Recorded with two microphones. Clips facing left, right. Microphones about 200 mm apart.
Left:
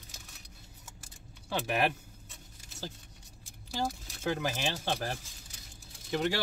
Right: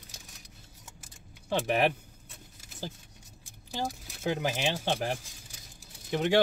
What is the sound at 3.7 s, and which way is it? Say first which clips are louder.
Speech: even; 15° right (ahead or behind).